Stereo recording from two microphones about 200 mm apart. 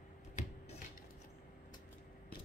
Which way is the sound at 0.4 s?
35° left (ahead or behind).